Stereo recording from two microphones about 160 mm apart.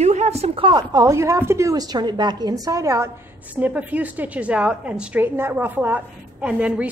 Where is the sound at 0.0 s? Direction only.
45° right (ahead or behind); by 3.1 s 20° right (ahead or behind).